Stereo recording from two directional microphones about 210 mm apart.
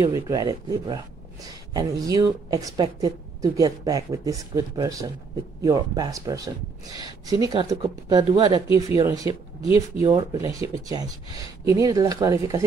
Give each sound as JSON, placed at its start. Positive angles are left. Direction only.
{"t": 0.0, "sound": "speech", "side_deg": -15}